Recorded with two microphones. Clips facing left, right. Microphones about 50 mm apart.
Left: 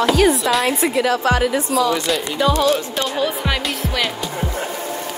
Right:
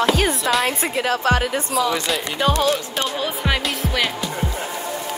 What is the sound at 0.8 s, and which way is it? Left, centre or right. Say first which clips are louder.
Speech: left 3 dB; right.